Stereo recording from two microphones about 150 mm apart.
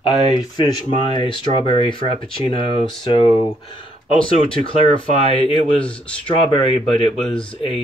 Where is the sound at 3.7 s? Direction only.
35° left (ahead or behind).